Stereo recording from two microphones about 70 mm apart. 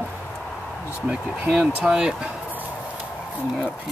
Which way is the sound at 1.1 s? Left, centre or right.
Centre.